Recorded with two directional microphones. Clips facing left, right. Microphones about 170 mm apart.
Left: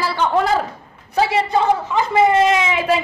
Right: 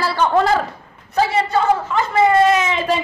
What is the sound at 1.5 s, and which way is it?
A woman's voice, 15° left (ahead or behind).